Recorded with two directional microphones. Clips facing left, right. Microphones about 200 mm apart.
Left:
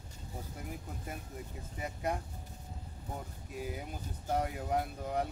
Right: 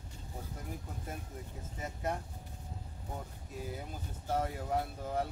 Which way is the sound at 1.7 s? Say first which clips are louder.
Left 1 dB; 15° left (ahead or behind).